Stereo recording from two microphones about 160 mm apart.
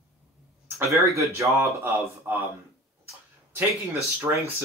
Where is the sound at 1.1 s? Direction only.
20° right (ahead or behind).